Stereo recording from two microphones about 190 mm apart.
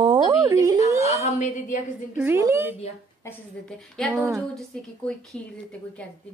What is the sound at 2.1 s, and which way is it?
Speech, 10° right (ahead or behind).